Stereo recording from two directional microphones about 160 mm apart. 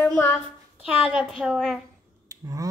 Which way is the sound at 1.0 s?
Centre (ahead or behind).